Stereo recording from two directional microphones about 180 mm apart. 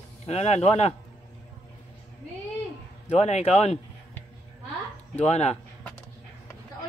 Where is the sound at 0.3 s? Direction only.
35° left (ahead or behind).